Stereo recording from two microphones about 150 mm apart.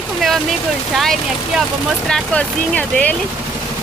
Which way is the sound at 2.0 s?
5° left (ahead or behind).